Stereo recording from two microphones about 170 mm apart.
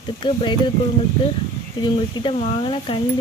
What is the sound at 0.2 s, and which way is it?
Speech, 30° left (ahead or behind).